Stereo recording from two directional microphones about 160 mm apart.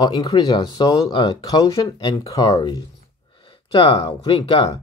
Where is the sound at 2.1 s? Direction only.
20° left (ahead or behind).